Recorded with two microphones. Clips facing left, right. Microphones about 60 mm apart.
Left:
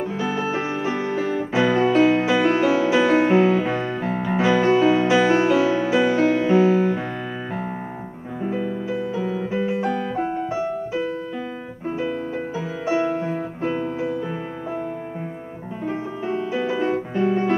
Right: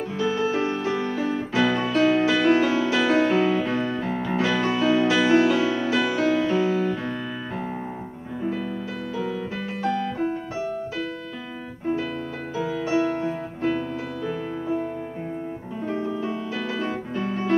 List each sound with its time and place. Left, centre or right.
0.2 s music: centre
9.1 s music: left
12.5 s music: left
16.5 s music: left